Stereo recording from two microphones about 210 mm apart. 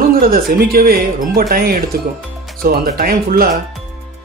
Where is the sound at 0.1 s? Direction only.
45° right (ahead or behind).